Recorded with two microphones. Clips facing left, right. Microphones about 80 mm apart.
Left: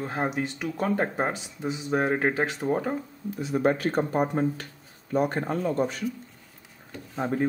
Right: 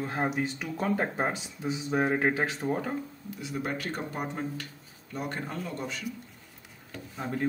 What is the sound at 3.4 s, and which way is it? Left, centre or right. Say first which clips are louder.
Speech: left 9 dB; left.